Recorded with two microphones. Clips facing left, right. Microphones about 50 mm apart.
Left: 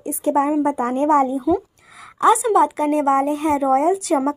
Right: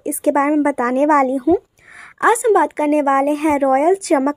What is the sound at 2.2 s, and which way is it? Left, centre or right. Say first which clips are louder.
Speech: right 1 dB; right.